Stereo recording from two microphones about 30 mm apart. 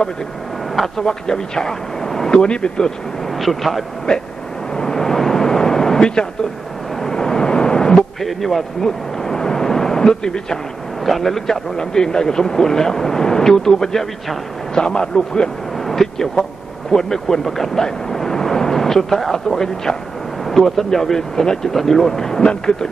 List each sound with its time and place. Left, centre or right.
0.9 s speech: left
2.5 s speech: left
3.3 s a man's voice: centre
4.1 s a man's voice: centre
4.7 s vehicle: centre
7.9 s a sound: centre
11.1 s a man's voice: centre; by 15.5 s left
15.8 s a man's voice: centre
18.1 s a sound: centre
20.4 s a man's voice: centre
22.4 s speech: left